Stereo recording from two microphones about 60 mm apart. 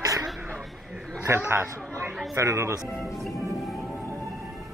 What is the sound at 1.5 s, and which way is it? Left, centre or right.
Speech, right.